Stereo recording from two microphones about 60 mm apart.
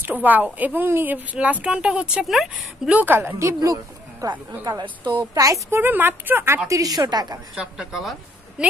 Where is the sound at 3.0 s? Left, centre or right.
Right.